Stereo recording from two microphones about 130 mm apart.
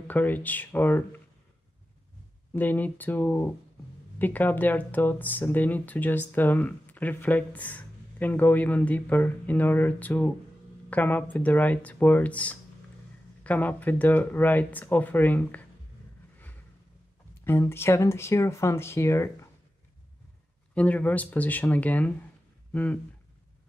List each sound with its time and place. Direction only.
0.1 s speech: 15° left (ahead or behind)
2.5 s speech: 15° left (ahead or behind)
17.5 s speech: 20° left (ahead or behind)
20.7 s speech: 10° left (ahead or behind)